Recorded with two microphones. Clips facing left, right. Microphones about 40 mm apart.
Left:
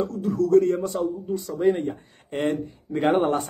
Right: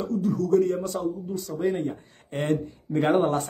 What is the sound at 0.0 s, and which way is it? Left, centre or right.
A man's voice, left.